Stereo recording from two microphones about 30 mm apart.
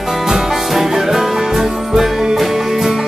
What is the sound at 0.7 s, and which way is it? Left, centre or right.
Music, centre.